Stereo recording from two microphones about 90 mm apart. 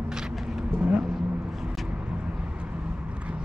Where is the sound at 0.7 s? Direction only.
10° right (ahead or behind).